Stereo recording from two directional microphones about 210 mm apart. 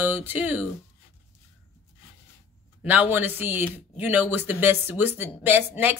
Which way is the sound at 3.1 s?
10° right (ahead or behind).